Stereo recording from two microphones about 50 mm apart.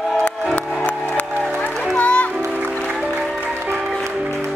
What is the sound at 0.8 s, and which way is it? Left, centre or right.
Music, left.